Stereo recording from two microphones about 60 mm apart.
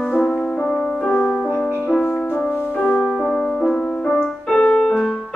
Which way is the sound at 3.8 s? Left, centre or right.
Centre.